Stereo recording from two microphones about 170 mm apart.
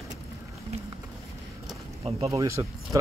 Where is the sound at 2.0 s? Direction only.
35° right (ahead or behind).